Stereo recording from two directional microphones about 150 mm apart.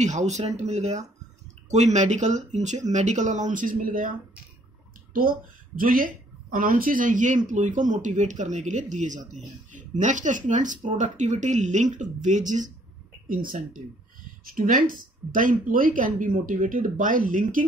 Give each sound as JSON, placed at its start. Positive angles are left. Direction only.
{"t": 0.0, "sound": "speech", "side_deg": -50}
{"t": 5.8, "sound": "speech", "side_deg": -65}
{"t": 13.3, "sound": "speech", "side_deg": -65}